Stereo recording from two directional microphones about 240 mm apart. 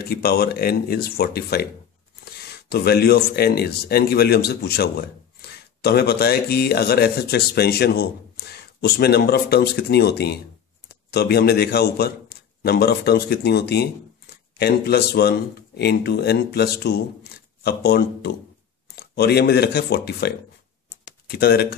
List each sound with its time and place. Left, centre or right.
0.0 s a man's voice: left
21.0 s typing: left